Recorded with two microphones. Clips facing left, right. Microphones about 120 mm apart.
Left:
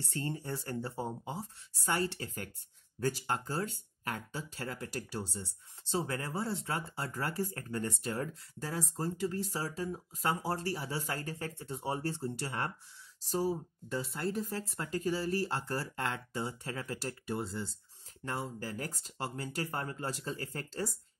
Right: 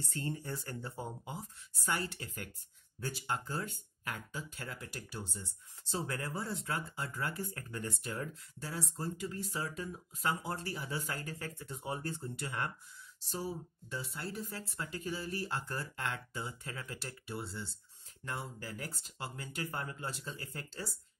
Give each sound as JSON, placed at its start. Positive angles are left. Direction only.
{"t": 0.1, "sound": "speech", "side_deg": 25}